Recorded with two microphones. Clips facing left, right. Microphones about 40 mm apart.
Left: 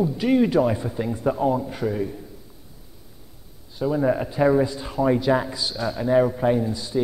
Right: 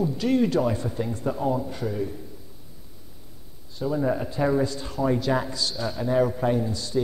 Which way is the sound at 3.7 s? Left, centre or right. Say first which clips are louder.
Left 4 dB; left.